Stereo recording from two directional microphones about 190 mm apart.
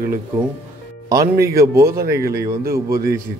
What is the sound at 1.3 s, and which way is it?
Speech, 15° right (ahead or behind).